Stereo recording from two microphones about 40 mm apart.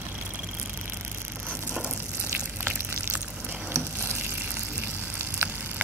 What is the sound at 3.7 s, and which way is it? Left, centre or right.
Frying, right.